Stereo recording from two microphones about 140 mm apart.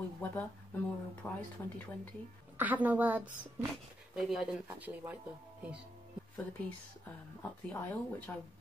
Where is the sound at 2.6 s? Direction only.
10° right (ahead or behind).